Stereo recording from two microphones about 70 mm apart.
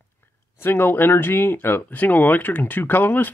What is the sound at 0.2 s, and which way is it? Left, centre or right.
Speech, left.